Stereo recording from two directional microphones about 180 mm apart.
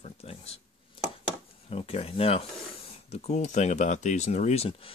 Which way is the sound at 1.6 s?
35° left (ahead or behind).